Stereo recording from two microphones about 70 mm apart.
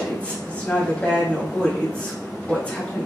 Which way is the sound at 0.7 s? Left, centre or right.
Centre.